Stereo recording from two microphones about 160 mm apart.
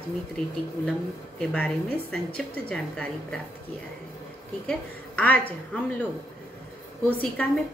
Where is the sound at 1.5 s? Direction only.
5° left (ahead or behind).